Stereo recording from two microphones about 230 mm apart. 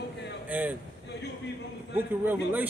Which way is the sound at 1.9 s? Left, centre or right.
Centre.